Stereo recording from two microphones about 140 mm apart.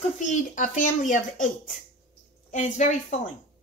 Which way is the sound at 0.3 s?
65° left (ahead or behind).